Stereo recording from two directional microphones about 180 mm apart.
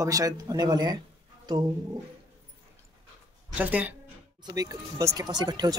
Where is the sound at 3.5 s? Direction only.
10° right (ahead or behind).